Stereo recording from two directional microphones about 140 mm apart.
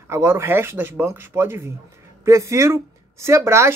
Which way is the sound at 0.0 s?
20° right (ahead or behind).